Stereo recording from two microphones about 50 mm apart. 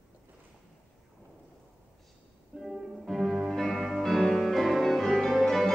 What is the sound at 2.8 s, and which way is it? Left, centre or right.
Music, centre.